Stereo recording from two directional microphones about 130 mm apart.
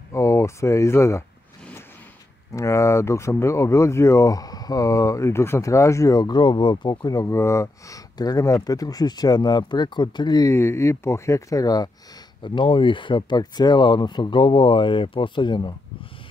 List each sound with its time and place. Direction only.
0.1 s speech: 20° left (ahead or behind)
2.5 s speech: 25° left (ahead or behind)